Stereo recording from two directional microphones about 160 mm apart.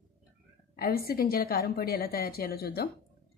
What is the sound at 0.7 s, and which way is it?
A woman's voice, 70° left (ahead or behind).